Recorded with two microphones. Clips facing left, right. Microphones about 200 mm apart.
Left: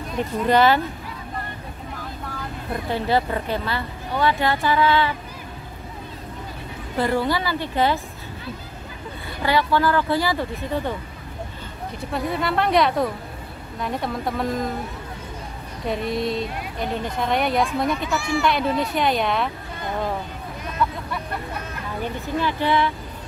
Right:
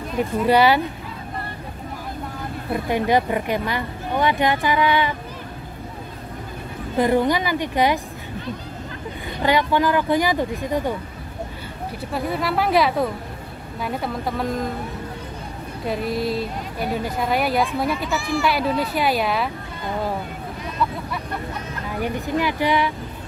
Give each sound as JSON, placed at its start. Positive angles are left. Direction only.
{"t": 0.4, "sound": "speech", "side_deg": -10}
{"t": 2.7, "sound": "speech", "side_deg": -15}
{"t": 7.0, "sound": "speech", "side_deg": -15}
{"t": 9.4, "sound": "speech", "side_deg": -15}
{"t": 12.1, "sound": "speech", "side_deg": 0}
{"t": 15.9, "sound": "speech", "side_deg": 0}
{"t": 22.0, "sound": "speech", "side_deg": -15}